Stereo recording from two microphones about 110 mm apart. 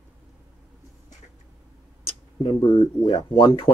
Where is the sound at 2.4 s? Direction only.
55° left (ahead or behind).